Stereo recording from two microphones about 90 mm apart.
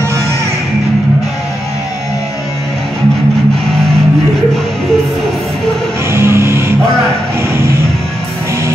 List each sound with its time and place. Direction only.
6.1 s music: 30° right (ahead or behind)